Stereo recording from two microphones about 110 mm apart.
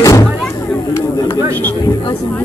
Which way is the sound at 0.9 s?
20° left (ahead or behind).